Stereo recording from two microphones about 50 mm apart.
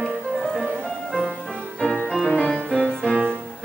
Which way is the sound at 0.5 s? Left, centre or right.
Centre.